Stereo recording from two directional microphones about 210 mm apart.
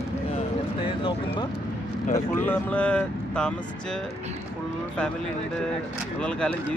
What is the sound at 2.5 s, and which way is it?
Speech, 5° left (ahead or behind).